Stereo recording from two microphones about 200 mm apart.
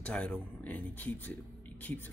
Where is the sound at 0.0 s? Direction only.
5° left (ahead or behind).